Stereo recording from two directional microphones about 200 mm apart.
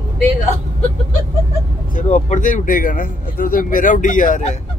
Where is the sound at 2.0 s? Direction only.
35° left (ahead or behind).